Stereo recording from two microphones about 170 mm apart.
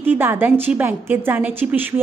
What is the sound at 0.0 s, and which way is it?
A woman's voice, 10° right (ahead or behind).